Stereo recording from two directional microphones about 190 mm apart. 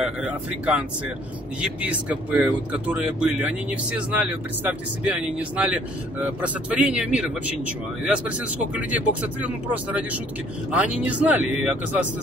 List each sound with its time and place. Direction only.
0.0 s speech: 5° right (ahead or behind)